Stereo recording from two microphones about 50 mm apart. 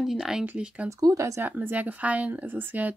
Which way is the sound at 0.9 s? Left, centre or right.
Right.